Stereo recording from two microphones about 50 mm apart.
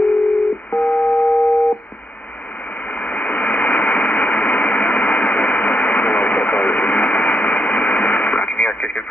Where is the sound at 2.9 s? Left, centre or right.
Left.